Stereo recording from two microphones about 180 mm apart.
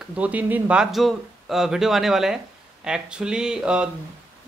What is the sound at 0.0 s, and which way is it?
Speech, 5° right (ahead or behind).